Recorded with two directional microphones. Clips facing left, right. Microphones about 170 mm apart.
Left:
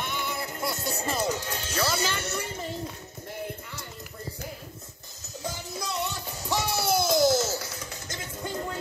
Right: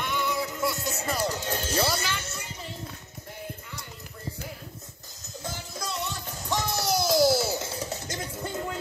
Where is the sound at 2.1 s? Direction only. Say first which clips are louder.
Left 4 dB; 60° left (ahead or behind).